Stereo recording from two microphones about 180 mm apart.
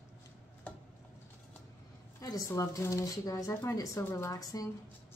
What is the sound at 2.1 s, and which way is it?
Speech, 20° left (ahead or behind).